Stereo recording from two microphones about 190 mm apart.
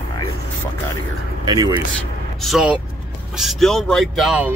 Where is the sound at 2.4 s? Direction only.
5° right (ahead or behind).